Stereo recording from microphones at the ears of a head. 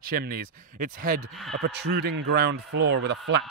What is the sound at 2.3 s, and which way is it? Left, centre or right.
A man's voice, right.